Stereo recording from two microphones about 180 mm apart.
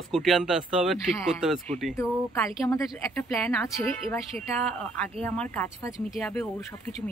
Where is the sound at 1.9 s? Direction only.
15° left (ahead or behind).